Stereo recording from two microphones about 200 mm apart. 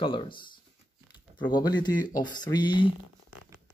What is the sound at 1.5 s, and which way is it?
Speech, 20° left (ahead or behind).